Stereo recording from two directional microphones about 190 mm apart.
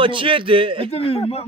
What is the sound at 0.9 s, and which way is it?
Speech, 30° left (ahead or behind).